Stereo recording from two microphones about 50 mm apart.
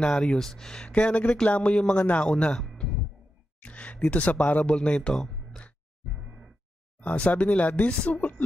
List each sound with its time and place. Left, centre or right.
0.0 s speech: centre
0.9 s a man's voice: left
2.2 s speech: centre
3.6 s speech: left
5.1 s a sound: centre
7.0 s speech: left